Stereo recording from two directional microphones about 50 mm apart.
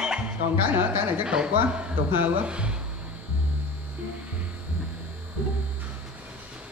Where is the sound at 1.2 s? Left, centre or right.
Centre.